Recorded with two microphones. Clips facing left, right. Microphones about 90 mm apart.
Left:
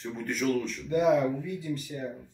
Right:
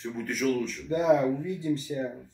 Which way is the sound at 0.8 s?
30° right (ahead or behind).